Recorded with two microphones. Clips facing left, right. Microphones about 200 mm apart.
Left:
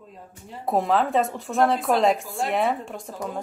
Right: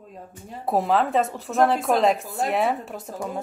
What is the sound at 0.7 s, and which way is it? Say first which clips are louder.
A woman's voice: even; centre (ahead or behind).